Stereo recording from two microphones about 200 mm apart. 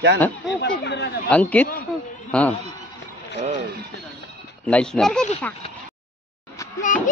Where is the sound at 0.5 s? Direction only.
60° left (ahead or behind).